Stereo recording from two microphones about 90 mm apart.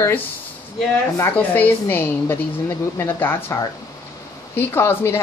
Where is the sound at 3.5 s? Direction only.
30° left (ahead or behind).